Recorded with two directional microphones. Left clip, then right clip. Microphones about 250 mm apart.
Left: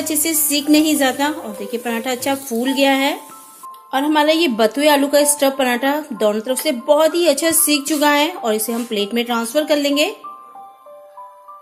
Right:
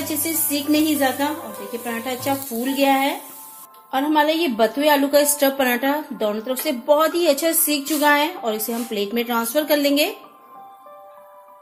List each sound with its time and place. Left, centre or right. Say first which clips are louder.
0.1 s a woman's voice: left 6 dB; left
3.9 s a woman's voice: left 3 dB; centre